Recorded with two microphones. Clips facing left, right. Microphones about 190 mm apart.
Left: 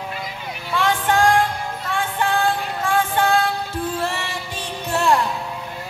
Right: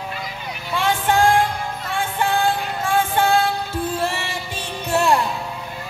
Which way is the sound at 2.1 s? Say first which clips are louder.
Right 1 dB; 15° right (ahead or behind).